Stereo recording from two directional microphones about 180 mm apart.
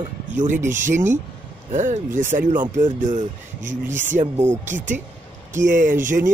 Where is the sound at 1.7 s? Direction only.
45° right (ahead or behind).